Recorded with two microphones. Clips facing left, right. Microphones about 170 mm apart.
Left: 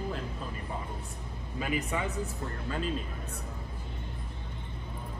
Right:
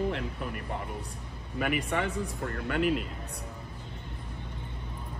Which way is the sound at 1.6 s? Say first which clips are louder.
Right 3 dB; 70° right (ahead or behind).